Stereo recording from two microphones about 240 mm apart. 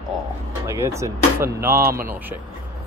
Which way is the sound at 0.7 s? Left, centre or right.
Centre.